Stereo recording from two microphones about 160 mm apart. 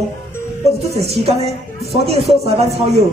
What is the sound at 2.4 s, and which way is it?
Speech, 40° right (ahead or behind).